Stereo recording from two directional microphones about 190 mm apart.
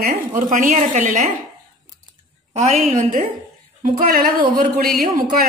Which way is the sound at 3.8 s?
45° right (ahead or behind).